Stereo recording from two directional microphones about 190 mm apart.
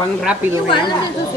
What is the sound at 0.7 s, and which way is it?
Speech, 25° left (ahead or behind).